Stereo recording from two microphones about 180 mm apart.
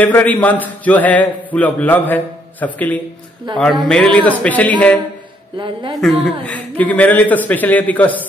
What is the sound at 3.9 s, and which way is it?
Speech, 5° left (ahead or behind).